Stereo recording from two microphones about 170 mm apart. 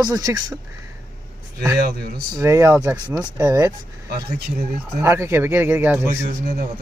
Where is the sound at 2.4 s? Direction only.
15° right (ahead or behind).